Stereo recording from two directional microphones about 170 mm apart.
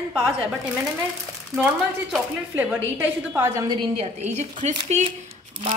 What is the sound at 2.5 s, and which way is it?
A woman's voice, 10° right (ahead or behind).